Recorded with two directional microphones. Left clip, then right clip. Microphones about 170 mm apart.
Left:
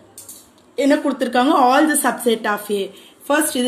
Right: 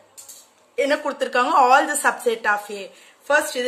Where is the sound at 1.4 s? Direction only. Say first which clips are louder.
Left 1 dB; 30° right (ahead or behind).